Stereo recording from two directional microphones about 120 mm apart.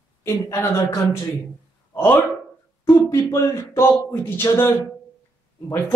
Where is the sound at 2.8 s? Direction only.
25° left (ahead or behind).